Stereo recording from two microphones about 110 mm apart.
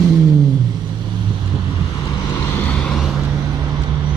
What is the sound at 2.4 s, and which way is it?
Vehicle, 20° left (ahead or behind).